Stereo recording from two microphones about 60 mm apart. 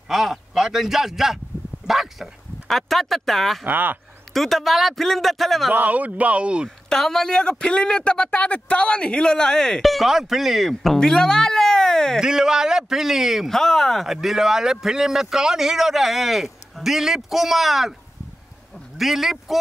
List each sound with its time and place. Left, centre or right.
0.1 s speech: centre
3.6 s speech: right
4.3 s speech: centre
5.7 s speech: right
6.9 s speech: centre
12.2 s a man's voice: centre
13.5 s speech: centre
18.9 s speech: centre